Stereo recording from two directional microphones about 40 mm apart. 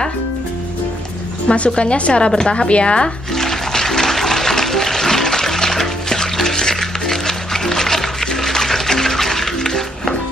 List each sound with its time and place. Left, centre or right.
1.5 s speech: left
3.3 s music: centre